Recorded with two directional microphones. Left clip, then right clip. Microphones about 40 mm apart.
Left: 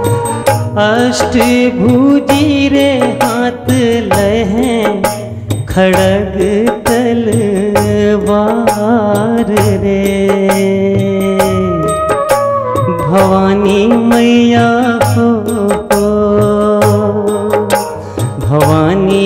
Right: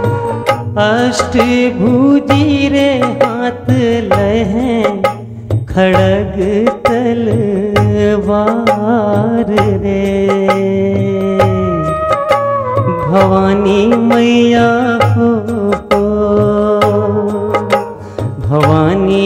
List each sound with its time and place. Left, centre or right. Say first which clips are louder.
0.7 s music: even; right
5.9 s music: left 1 dB; right
7.9 s music: left 1 dB; right
13.1 s music: left 1 dB; right
18.5 s music: left 1 dB; right